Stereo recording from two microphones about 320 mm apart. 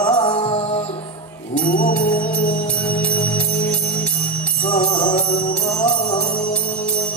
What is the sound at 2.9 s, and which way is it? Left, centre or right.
Music, centre.